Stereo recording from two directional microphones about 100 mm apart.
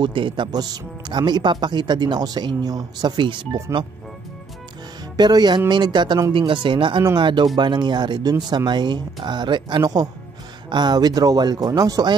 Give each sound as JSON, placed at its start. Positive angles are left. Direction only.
{"t": 0.0, "sound": "speech", "side_deg": -55}
{"t": 5.1, "sound": "speech", "side_deg": -45}